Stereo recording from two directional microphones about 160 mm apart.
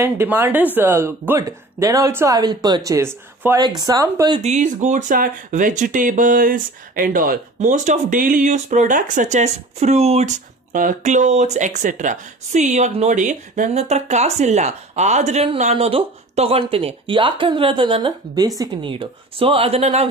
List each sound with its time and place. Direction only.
0.0 s a woman's voice: 15° right (ahead or behind)
4.4 s speech: 45° right (ahead or behind)